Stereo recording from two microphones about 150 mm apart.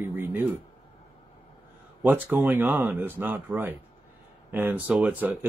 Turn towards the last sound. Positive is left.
turn(degrees=-10)  # may be behind; listen again after turning